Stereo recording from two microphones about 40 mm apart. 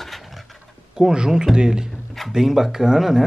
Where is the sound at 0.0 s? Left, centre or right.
Centre.